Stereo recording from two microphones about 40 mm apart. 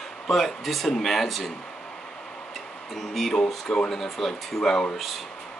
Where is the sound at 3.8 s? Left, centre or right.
Centre.